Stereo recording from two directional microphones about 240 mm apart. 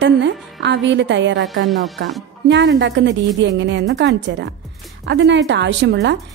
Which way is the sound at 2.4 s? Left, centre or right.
Right.